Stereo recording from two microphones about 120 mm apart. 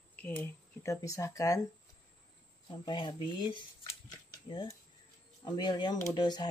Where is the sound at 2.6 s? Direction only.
40° left (ahead or behind).